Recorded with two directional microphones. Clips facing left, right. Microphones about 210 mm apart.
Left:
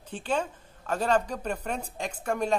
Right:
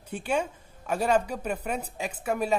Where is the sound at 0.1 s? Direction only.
10° right (ahead or behind).